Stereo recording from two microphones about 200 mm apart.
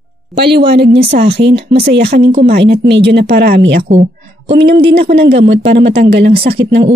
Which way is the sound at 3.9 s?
35° right (ahead or behind).